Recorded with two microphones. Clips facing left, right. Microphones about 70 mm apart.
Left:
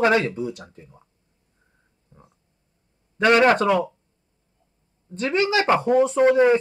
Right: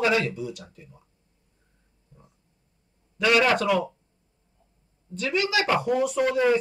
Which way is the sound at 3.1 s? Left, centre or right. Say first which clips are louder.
Left 5 dB; left.